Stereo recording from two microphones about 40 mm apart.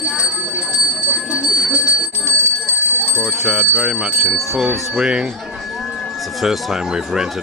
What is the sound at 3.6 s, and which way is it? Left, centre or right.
Speech, right.